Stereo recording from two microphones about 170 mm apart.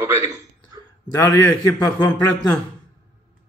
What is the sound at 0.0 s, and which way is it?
Speech, 15° right (ahead or behind).